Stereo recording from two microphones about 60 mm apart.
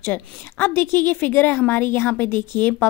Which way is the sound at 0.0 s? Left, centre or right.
Left.